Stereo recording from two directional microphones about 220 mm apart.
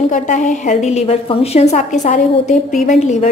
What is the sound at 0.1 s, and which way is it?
A woman's voice, 35° left (ahead or behind).